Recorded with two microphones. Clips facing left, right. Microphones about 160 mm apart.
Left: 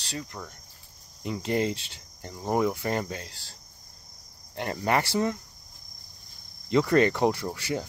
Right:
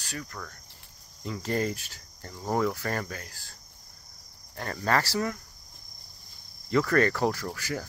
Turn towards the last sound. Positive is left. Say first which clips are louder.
# left 3 dB
turn(degrees=20)  # may be behind; listen again after turning